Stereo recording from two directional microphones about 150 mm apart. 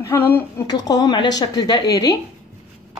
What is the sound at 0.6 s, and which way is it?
A woman's voice, 25° left (ahead or behind).